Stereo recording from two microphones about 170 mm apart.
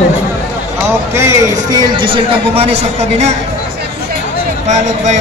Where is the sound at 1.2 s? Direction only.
15° right (ahead or behind).